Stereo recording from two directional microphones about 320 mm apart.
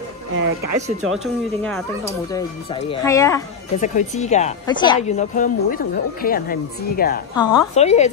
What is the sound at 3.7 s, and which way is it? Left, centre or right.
A woman's voice, left.